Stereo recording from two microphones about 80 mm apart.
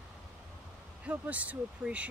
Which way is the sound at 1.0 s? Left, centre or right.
Centre.